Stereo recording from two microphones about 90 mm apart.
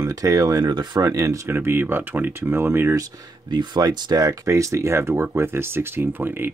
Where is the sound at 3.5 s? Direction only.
50° right (ahead or behind); by 6.5 s 25° right (ahead or behind).